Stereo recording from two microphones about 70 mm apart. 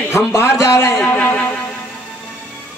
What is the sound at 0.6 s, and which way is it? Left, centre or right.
Speech, left.